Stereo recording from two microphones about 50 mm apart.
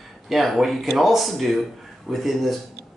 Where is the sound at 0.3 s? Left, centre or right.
Centre.